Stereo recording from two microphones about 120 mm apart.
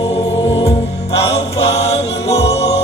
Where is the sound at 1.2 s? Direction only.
60° left (ahead or behind).